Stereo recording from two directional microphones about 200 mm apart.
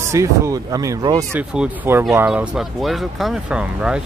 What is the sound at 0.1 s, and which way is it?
Speech, 15° right (ahead or behind).